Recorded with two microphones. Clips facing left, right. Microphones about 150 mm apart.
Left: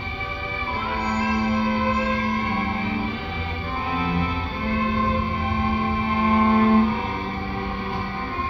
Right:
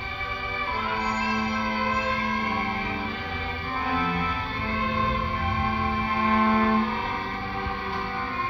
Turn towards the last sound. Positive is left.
turn(degrees=20)  # may be behind; listen again after turning